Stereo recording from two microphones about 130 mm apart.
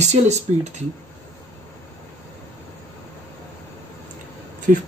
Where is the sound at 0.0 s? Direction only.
60° right (ahead or behind).